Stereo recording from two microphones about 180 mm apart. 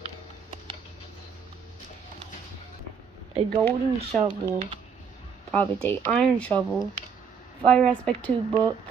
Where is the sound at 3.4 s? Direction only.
5° left (ahead or behind).